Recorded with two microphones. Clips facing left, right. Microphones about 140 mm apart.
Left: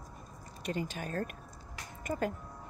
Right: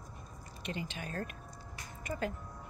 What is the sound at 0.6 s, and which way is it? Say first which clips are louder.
Speech: left 4 dB; 45° left (ahead or behind).